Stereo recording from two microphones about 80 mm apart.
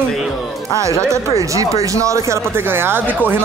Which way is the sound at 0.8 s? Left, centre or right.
Right.